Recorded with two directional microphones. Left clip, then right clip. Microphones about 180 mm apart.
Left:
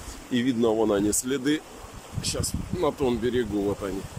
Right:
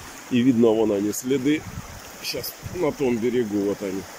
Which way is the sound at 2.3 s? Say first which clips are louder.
Right 2 dB; 50° left (ahead or behind).